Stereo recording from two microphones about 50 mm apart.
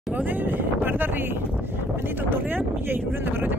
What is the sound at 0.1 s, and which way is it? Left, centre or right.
Speech, right.